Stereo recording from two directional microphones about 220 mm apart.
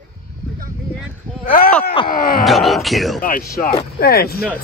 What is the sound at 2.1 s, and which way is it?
Speech, 40° left (ahead or behind).